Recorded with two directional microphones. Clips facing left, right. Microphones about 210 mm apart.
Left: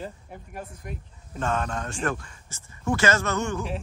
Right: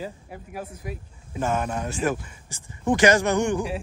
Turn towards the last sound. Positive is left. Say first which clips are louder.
# right 5 dB
turn(degrees=-15)  # may be behind; listen again after turning